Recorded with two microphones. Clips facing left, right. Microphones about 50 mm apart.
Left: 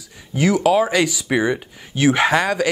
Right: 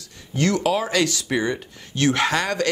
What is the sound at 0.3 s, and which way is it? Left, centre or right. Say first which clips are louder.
Speech: left 4 dB; centre.